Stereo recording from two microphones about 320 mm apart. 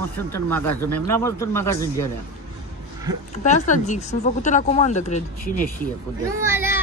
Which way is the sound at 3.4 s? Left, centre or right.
Left.